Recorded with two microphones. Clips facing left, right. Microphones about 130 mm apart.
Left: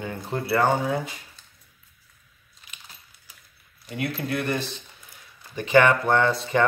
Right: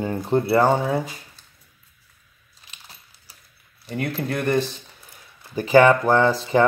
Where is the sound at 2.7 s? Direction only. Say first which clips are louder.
Even; 30° right (ahead or behind).